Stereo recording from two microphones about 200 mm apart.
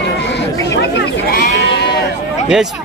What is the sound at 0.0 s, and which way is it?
Chatter, 60° left (ahead or behind).